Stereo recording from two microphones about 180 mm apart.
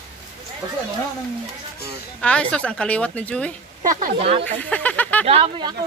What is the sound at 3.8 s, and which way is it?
Speech, 50° right (ahead or behind).